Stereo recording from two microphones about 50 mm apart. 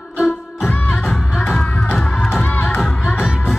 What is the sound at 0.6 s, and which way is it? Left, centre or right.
Music, left.